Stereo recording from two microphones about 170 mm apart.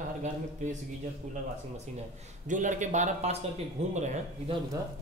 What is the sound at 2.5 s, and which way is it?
Speech, 45° right (ahead or behind).